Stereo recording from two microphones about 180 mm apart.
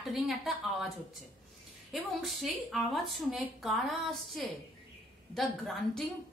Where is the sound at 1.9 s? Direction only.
Centre (ahead or behind).